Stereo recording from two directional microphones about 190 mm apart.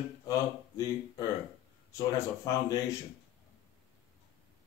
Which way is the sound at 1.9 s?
20° left (ahead or behind).